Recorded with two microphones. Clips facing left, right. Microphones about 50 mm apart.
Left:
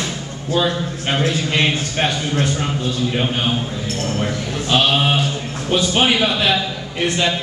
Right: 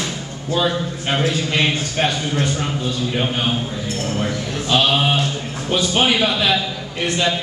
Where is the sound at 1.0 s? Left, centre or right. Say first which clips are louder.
Left 1 dB; centre.